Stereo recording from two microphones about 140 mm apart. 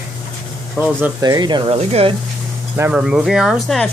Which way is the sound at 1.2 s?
30° right (ahead or behind).